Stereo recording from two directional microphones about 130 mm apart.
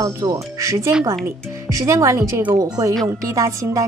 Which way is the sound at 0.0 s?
25° right (ahead or behind).